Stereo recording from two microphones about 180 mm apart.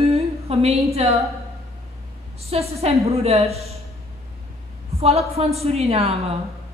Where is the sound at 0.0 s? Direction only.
35° right (ahead or behind).